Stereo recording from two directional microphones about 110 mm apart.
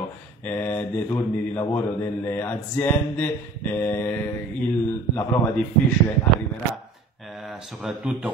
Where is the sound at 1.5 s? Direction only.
30° left (ahead or behind).